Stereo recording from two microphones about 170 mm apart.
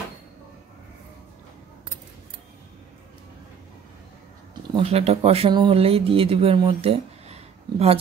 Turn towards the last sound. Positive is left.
turn(degrees=-35)  # may be behind; listen again after turning